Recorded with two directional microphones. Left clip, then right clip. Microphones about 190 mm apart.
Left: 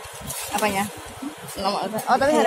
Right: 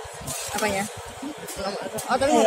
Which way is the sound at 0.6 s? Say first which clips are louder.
Left 3 dB; 50° left (ahead or behind).